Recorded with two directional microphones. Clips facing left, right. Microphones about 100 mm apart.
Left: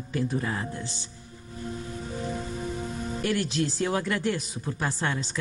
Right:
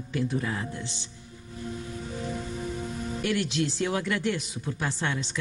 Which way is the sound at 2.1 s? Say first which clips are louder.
Left 1 dB; 30° left (ahead or behind).